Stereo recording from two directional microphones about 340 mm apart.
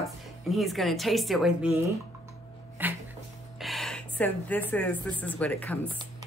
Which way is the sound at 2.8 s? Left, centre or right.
Centre.